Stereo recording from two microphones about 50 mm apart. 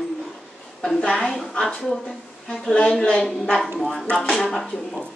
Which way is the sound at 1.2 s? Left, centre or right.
Centre.